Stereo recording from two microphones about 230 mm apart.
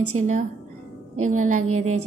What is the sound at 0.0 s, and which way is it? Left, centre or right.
Music, right.